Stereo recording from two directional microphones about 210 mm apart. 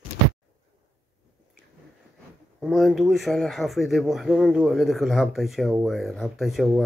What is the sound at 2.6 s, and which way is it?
Speech, centre (ahead or behind).